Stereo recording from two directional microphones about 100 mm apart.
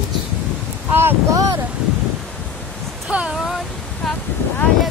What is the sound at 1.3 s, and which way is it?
Speech, 35° right (ahead or behind).